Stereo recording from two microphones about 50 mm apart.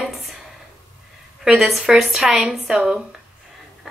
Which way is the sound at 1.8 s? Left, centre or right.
Centre.